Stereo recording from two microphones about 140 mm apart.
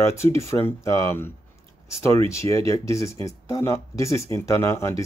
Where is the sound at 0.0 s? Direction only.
20° left (ahead or behind).